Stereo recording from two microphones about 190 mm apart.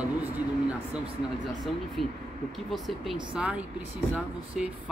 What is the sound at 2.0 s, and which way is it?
Speech, centre (ahead or behind).